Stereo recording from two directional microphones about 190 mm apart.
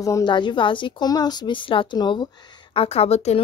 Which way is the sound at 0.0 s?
20° left (ahead or behind).